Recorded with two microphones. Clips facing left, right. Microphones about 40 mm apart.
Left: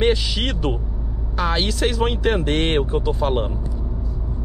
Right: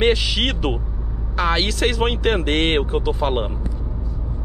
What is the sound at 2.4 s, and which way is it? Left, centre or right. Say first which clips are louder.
Speech: right 1 dB; right.